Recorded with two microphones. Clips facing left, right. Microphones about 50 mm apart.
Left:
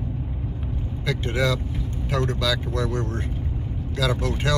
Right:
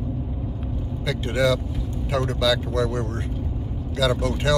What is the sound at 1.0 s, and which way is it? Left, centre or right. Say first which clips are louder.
Speech: right 2 dB; left.